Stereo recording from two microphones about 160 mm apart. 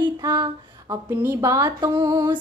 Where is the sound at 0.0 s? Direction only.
25° right (ahead or behind).